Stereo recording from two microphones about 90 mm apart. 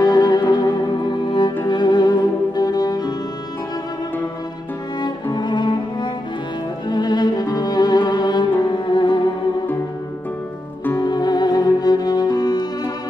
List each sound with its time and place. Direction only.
0.0 s music: 50° left (ahead or behind)
5.0 s music: 55° left (ahead or behind)
6.9 s music: 50° left (ahead or behind)
11.0 s music: 50° left (ahead or behind)